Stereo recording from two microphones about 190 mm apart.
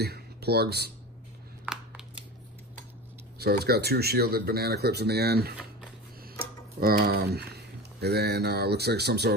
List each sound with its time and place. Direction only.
0.0 s speech: 60° right (ahead or behind)
1.7 s scissors: 5° right (ahead or behind)
3.3 s speech: 55° right (ahead or behind)